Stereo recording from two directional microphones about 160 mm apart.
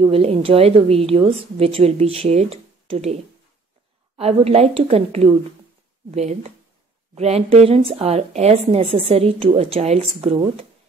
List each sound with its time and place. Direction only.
0.0 s a woman's voice: 40° right (ahead or behind)
4.2 s a woman's voice: 40° right (ahead or behind)